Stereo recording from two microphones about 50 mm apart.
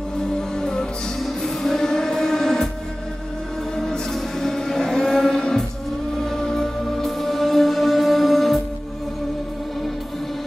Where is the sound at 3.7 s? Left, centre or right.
Centre.